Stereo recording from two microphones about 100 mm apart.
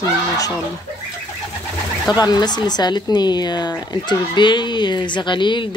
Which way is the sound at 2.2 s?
45° left (ahead or behind).